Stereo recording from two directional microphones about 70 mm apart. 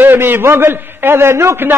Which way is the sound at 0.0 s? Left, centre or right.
Right.